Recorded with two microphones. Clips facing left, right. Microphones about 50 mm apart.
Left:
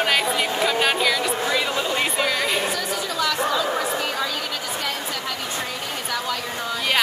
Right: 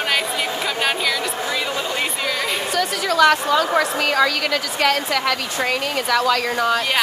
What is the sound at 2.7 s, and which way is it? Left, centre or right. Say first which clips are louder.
A woman's voice: right 6 dB; right.